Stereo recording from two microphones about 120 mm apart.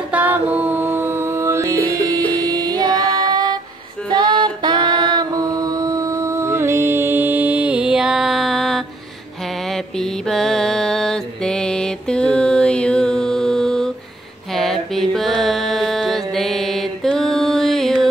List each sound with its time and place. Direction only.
0.1 s music: 10° right (ahead or behind)
9.7 s mantra: 5° left (ahead or behind)